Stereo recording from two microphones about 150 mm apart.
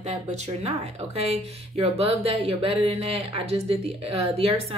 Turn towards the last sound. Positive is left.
turn(degrees=-40)  # may be behind; listen again after turning